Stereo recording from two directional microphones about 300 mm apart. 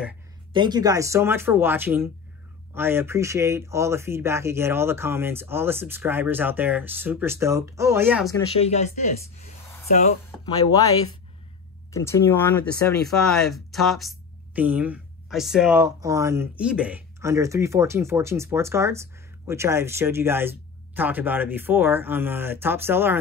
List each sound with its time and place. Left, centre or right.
0.5 s speech: centre
8.3 s speech: centre
10.4 s speech: centre